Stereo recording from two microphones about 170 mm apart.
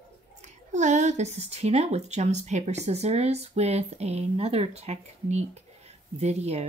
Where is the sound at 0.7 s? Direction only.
45° right (ahead or behind).